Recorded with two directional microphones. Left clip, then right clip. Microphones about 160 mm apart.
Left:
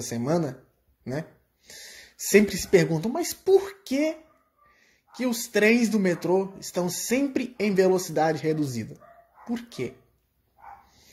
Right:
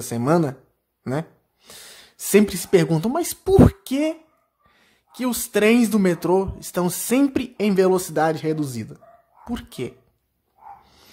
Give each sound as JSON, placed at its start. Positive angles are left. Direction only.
{"t": 0.0, "sound": "speech", "side_deg": -20}
{"t": 2.0, "sound": "speech", "side_deg": -15}